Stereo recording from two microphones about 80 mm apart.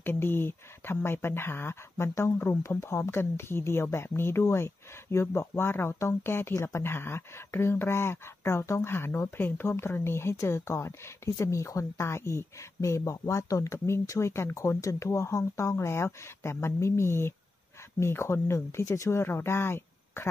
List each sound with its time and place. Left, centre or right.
0.0 s speech: left